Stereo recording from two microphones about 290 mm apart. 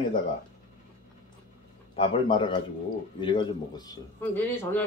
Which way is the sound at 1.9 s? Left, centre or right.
Centre.